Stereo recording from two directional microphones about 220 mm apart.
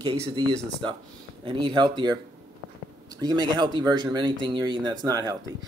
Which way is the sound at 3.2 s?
20° right (ahead or behind).